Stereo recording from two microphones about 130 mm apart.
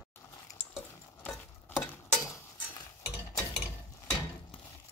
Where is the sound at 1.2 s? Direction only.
10° left (ahead or behind).